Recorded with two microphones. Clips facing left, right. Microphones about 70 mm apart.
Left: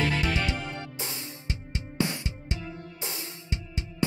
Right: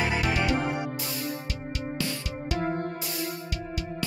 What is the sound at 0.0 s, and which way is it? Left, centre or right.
Music, centre.